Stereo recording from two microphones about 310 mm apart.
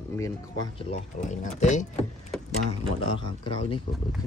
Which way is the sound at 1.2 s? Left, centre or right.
Left.